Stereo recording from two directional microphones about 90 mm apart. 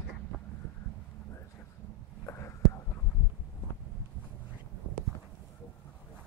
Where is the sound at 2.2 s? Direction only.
30° left (ahead or behind).